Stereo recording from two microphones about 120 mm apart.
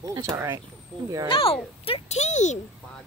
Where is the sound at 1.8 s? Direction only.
60° left (ahead or behind); by 2.5 s 75° left (ahead or behind).